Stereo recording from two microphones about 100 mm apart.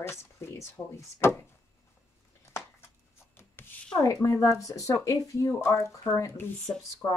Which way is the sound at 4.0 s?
35° left (ahead or behind).